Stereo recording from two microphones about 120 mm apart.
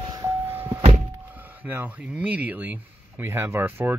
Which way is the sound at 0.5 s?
15° right (ahead or behind).